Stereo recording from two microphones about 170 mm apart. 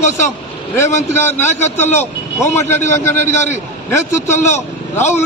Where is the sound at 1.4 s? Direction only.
45° left (ahead or behind).